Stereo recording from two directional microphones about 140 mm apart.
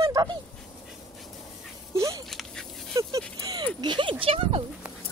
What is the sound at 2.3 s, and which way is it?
Dog, centre (ahead or behind).